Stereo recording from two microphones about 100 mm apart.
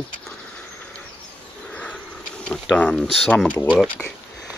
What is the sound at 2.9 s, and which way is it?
Speech, centre (ahead or behind).